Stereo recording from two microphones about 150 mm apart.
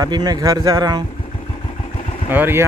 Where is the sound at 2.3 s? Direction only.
15° right (ahead or behind).